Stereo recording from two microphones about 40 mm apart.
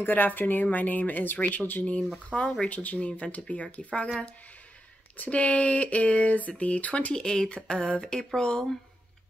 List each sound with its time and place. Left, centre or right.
0.0 s speech: left
2.2 s speech: left
2.7 s speech: left
5.1 s speech: left
7.2 s speech: centre